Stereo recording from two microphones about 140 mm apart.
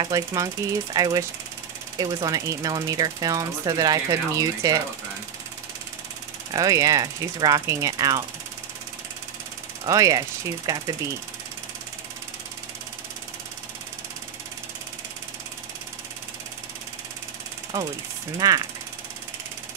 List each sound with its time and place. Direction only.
0.0 s speech: 25° right (ahead or behind)
6.5 s speech: 25° right (ahead or behind)
9.8 s speech: 25° right (ahead or behind)
17.7 s speech: 20° right (ahead or behind)